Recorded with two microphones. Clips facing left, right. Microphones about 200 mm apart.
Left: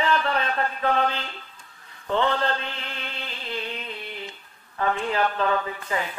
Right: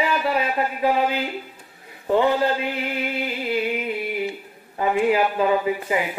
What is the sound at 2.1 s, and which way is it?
Chant, 10° right (ahead or behind).